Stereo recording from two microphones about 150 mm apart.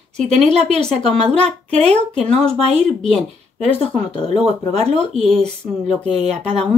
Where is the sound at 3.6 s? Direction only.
40° left (ahead or behind).